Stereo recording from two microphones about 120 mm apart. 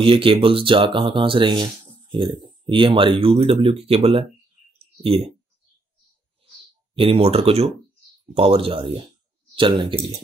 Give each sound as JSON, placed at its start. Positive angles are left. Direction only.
{"t": 0.0, "sound": "speech", "side_deg": -50}
{"t": 7.0, "sound": "speech", "side_deg": -50}